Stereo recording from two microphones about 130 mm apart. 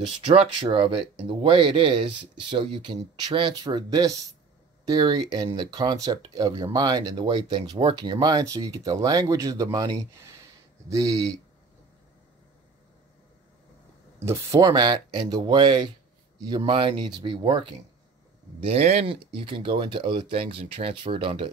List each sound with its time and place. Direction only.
0.6 s speech: 40° right (ahead or behind)
3.6 s speech: 30° right (ahead or behind)
14.2 s speech: 25° right (ahead or behind); by 17.7 s 40° right (ahead or behind)
18.6 s speech: 50° right (ahead or behind)